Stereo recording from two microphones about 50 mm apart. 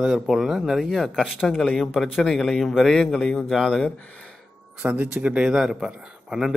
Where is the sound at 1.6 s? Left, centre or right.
Centre.